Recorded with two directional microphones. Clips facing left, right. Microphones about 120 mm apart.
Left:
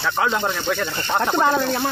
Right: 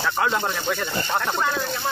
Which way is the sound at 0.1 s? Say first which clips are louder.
Left 4 dB; 5° left (ahead or behind).